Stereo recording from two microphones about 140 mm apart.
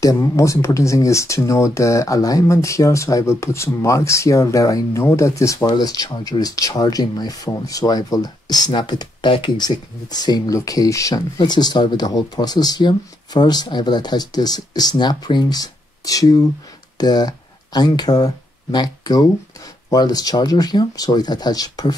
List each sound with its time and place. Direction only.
0.0 s speech: 25° left (ahead or behind)